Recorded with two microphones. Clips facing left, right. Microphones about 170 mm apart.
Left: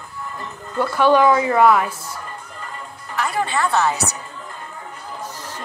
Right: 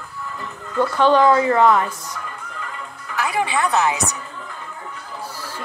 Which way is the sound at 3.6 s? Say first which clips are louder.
Left 1 dB; 15° right (ahead or behind).